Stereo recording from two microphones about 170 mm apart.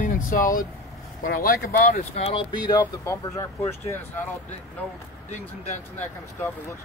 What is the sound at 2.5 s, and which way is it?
Speech, 25° left (ahead or behind).